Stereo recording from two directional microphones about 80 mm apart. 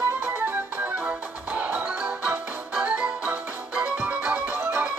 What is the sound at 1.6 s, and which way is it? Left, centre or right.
Music, centre.